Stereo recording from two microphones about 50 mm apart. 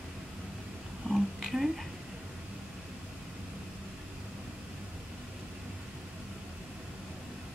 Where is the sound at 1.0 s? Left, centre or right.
Centre.